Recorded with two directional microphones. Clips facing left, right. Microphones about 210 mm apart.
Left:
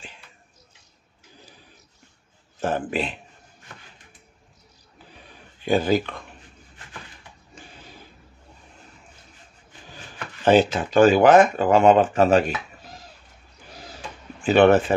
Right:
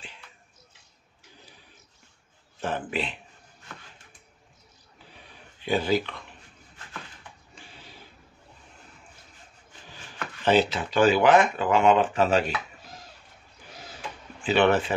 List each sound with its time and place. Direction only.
2.6 s speech: 45° left (ahead or behind)
5.7 s speech: 45° left (ahead or behind)
10.4 s speech: 45° left (ahead or behind)
14.4 s speech: 45° left (ahead or behind)